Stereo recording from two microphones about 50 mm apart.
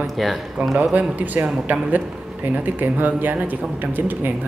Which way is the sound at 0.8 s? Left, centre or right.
Right.